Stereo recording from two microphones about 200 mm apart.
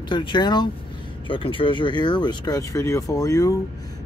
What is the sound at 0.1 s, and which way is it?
Speech, 20° left (ahead or behind).